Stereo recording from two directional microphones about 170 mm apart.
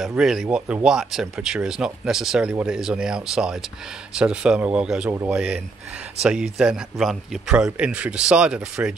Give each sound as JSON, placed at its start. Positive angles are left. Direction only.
{"t": 0.0, "sound": "speech", "side_deg": -5}